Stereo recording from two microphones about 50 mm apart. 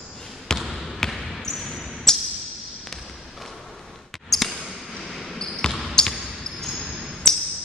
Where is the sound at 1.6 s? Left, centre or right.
Centre.